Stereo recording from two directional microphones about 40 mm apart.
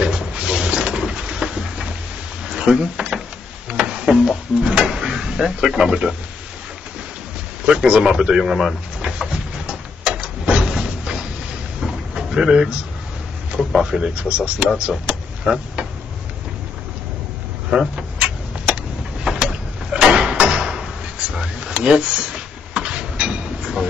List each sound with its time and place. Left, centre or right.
0.3 s a sound: right
7.6 s a man's voice: right
8.0 s pigeon: centre
11.8 s drawer open or close: centre
13.6 s a man's voice: centre
13.8 s a man's voice: centre
15.1 s vehicle: right
15.5 s speech: centre
19.3 s a sound: right